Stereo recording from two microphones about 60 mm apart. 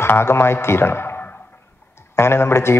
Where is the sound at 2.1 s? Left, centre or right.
Left.